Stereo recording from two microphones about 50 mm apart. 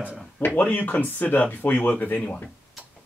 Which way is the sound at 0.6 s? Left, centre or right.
Left.